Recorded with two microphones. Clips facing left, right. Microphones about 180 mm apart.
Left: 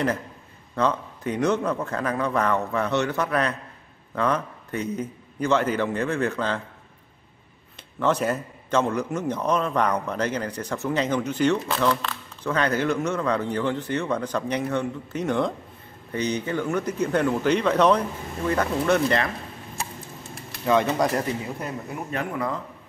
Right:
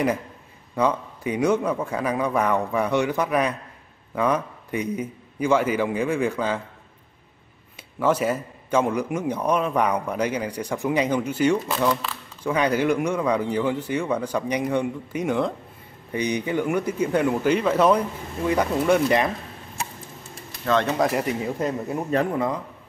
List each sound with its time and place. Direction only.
0.7 s a man's voice: 10° right (ahead or behind)
7.7 s a man's voice: 10° right (ahead or behind)
20.8 s speech: centre (ahead or behind)
21.6 s speech: 35° right (ahead or behind)